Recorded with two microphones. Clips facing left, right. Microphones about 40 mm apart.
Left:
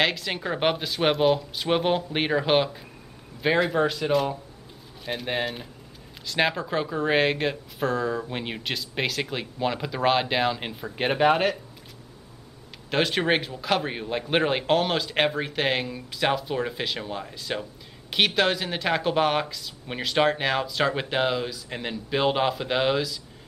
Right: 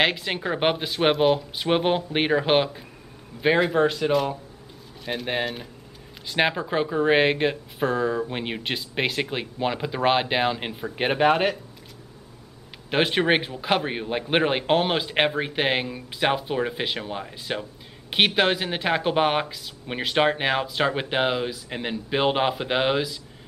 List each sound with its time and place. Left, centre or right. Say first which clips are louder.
0.0 s speech: right 2 dB; centre
6.2 s speech: right 1 dB; centre
12.9 s speech: right 2 dB; centre